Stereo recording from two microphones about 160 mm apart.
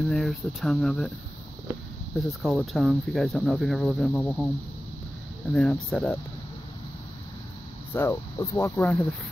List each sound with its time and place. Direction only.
0.0 s speech: centre (ahead or behind)
2.1 s speech: centre (ahead or behind)
5.5 s speech: 5° left (ahead or behind)
7.9 s speech: 15° left (ahead or behind)